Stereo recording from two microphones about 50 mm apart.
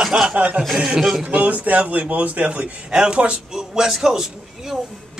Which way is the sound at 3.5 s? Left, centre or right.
Centre.